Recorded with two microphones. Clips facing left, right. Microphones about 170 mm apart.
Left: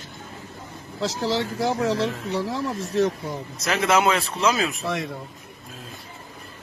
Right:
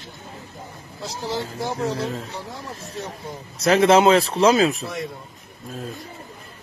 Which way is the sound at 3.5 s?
30° right (ahead or behind).